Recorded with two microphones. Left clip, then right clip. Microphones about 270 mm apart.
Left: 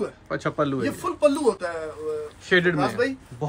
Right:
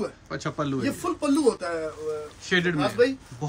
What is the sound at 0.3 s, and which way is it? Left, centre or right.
Speech, centre.